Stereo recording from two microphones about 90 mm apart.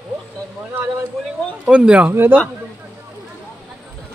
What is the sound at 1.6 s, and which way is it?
Speech, 10° right (ahead or behind).